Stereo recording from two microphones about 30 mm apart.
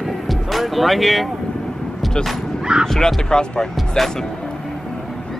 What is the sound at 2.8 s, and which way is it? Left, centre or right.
Speech, centre.